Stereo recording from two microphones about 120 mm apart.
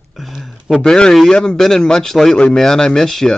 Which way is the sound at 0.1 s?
Centre (ahead or behind).